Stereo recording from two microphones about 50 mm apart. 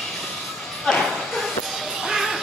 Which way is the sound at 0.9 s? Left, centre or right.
Centre.